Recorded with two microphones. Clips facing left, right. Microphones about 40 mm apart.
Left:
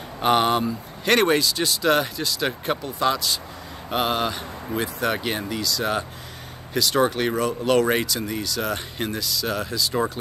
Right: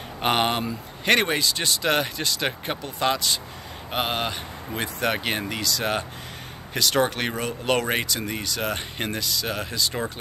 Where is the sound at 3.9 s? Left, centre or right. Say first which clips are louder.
Left 3 dB; right.